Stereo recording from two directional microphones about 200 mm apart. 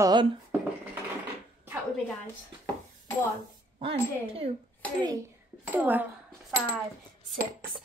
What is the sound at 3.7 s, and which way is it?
Speech, 30° right (ahead or behind).